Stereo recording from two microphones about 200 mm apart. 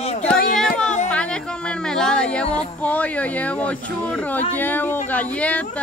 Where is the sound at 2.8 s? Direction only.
5° left (ahead or behind).